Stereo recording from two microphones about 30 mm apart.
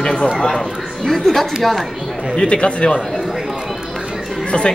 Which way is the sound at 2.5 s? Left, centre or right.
Left.